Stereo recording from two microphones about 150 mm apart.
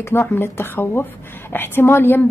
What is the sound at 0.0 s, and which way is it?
A woman's voice, 15° left (ahead or behind).